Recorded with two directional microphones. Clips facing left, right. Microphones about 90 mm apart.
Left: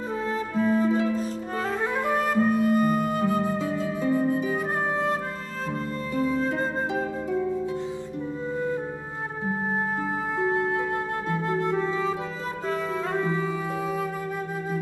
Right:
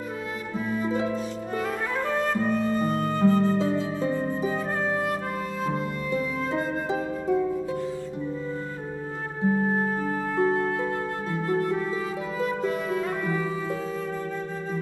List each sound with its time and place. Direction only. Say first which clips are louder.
0.6 s music: left 7 dB; 35° left (ahead or behind)
2.0 s flute: left 3 dB; 10° left (ahead or behind)
3.5 s music: right 2 dB; 25° right (ahead or behind)
4.9 s music: left 1 dB; 25° left (ahead or behind)
9.6 s music: right 2 dB; 15° left (ahead or behind)
12.6 s music: right 1 dB; 25° left (ahead or behind)